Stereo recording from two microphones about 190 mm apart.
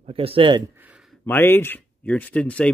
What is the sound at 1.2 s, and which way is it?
Speech, 10° left (ahead or behind).